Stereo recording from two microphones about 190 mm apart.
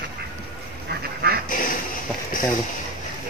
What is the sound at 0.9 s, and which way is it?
Goose, 55° right (ahead or behind).